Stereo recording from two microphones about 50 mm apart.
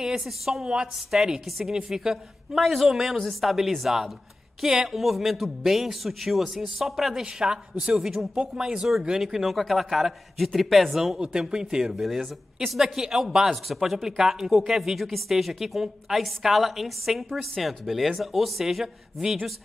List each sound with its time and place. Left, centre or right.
0.0 s a man's voice: centre
7.2 s a man's voice: centre
11.1 s a man's voice: centre